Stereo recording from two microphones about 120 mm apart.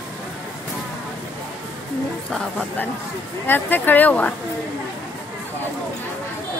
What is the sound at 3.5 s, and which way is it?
Speech, 15° left (ahead or behind).